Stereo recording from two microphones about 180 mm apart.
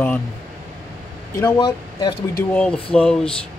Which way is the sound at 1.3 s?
20° left (ahead or behind).